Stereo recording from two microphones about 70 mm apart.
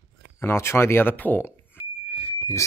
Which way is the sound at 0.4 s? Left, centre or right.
Left.